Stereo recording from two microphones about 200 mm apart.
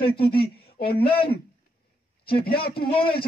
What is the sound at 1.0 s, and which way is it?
Speech, 25° left (ahead or behind).